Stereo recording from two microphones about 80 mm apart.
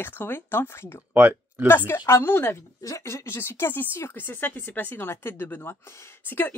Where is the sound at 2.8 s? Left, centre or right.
Left.